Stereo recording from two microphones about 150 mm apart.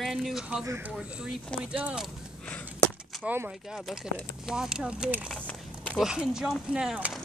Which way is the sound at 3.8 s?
Centre (ahead or behind).